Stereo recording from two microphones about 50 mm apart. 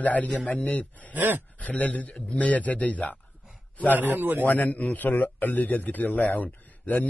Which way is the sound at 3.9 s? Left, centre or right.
Right.